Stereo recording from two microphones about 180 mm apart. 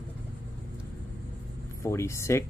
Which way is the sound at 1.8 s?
15° left (ahead or behind).